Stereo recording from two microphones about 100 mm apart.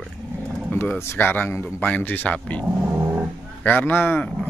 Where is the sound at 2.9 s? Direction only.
20° right (ahead or behind).